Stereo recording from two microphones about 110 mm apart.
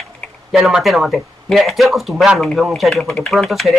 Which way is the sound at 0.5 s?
5° right (ahead or behind).